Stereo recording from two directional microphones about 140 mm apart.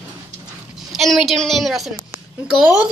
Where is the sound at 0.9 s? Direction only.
Centre (ahead or behind).